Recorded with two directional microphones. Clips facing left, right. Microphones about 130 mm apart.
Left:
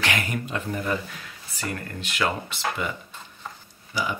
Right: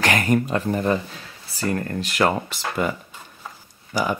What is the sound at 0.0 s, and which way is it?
Speech, 40° right (ahead or behind).